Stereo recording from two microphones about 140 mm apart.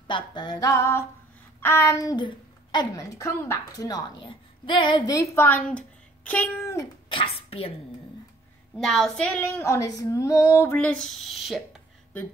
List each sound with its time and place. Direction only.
0.1 s a child's voice: 30° left (ahead or behind)
5.1 s speech: 20° left (ahead or behind)
7.1 s speech: 40° left (ahead or behind)
8.7 s female singing: 5° left (ahead or behind)
11.2 s speech: centre (ahead or behind)